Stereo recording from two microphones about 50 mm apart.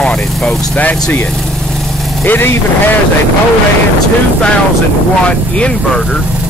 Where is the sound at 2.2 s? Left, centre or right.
Left.